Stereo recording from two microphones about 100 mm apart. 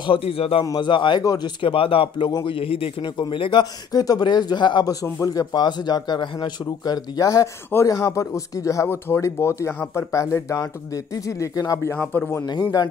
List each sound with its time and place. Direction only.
0.0 s a man's voice: 65° left (ahead or behind)
0.7 s speech: 50° left (ahead or behind)
1.2 s speech: 40° left (ahead or behind)
1.6 s speech: 65° left (ahead or behind)
3.2 s speech: 60° left (ahead or behind)
3.9 s speech: 40° left (ahead or behind)
5.2 s speech: 40° left (ahead or behind); by 12.4 s 20° left (ahead or behind)